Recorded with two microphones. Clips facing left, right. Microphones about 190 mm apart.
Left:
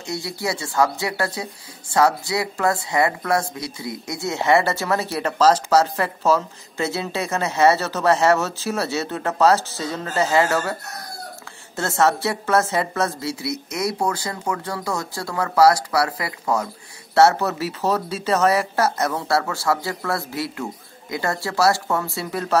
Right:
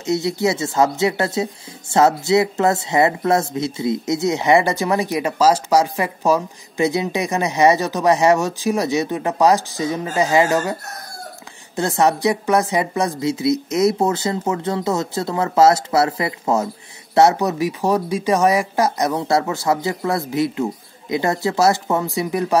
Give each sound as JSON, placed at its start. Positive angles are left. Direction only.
{"t": 0.0, "sound": "speech", "side_deg": -20}